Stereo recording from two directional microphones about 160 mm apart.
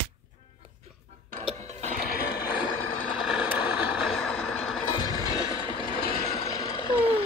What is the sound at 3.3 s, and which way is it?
Vehicle, 5° right (ahead or behind).